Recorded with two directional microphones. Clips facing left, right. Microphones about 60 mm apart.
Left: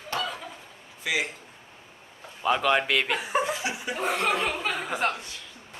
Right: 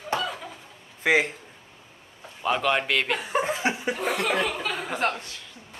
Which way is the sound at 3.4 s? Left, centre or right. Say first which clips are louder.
Right 3 dB; right.